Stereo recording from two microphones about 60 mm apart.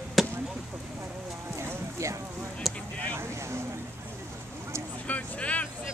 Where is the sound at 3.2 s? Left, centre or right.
Right.